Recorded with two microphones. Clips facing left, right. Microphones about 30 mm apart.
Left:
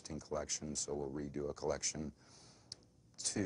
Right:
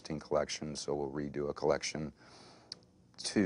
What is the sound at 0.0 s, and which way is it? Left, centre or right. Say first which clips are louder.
Speech: right 9 dB; right.